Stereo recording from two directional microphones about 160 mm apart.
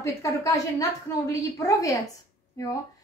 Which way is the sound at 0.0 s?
20° left (ahead or behind).